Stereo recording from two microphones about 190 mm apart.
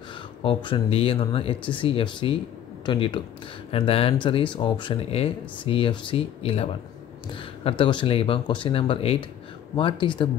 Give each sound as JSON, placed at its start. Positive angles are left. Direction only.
{"t": 0.4, "sound": "speech", "side_deg": 25}